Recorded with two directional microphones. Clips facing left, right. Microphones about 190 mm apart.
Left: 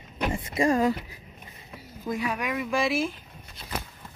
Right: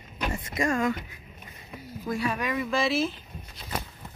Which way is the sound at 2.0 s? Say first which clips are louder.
Even; 15° left (ahead or behind).